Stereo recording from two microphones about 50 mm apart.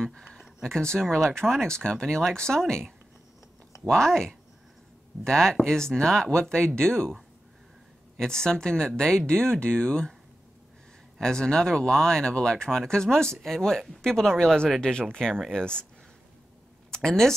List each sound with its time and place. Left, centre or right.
0.0 s speech: centre
3.9 s speech: centre
8.2 s speech: centre
11.1 s speech: centre
16.9 s speech: centre